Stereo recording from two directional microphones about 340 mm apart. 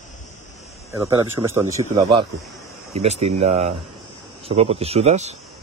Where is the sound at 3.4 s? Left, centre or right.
Centre.